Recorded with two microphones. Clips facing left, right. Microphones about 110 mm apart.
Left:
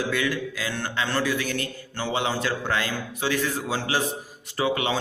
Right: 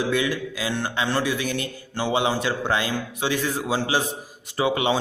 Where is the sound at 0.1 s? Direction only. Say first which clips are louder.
Right 2 dB; 20° right (ahead or behind).